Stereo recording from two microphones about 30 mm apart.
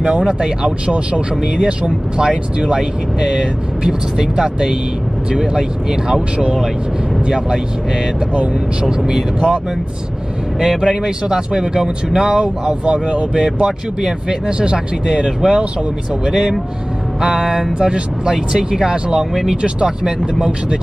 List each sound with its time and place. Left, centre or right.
0.0 s speech: centre
0.8 s speech: right
2.1 s speech: right
7.2 s speech: right
8.8 s speech: centre
10.6 s speech: centre
13.3 s speech: right
16.3 s speech: centre
19.5 s speech: right
20.1 s speech: centre